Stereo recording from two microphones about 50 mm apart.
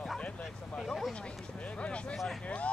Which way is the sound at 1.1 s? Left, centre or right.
Left.